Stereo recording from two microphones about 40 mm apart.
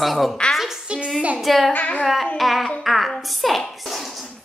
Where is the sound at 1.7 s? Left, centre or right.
Left.